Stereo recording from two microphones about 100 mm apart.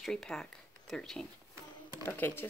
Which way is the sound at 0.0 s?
5° left (ahead or behind).